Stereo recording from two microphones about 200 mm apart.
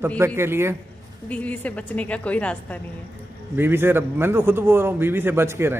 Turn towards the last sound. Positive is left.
turn(degrees=-10)  # may be behind; listen again after turning